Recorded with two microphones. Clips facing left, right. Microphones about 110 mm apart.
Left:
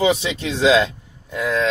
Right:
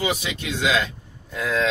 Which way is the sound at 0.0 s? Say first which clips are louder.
Left 7 dB; 30° left (ahead or behind).